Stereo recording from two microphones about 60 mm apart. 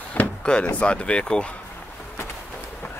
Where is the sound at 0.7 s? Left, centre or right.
Centre.